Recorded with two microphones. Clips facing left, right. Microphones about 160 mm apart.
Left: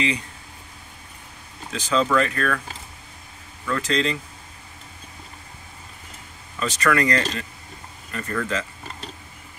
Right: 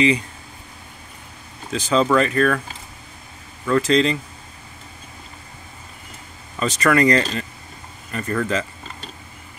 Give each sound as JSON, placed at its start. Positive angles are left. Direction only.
{"t": 1.7, "sound": "speech", "side_deg": -25}
{"t": 3.6, "sound": "speech", "side_deg": -30}
{"t": 6.6, "sound": "speech", "side_deg": -25}